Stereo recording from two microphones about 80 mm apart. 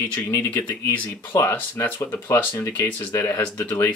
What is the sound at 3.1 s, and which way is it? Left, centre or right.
Speech, left.